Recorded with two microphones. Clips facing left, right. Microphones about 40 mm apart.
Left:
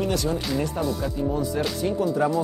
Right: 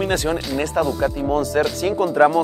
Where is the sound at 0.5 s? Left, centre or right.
Right.